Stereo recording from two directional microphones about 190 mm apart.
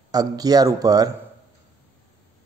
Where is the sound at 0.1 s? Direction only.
20° right (ahead or behind).